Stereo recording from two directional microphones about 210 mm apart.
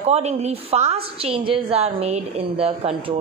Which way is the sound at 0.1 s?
30° right (ahead or behind).